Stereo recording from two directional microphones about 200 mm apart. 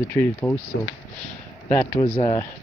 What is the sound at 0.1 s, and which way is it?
Speech, 10° left (ahead or behind).